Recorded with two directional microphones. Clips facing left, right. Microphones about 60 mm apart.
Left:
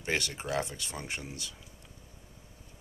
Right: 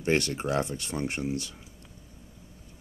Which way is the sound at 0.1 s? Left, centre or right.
Right.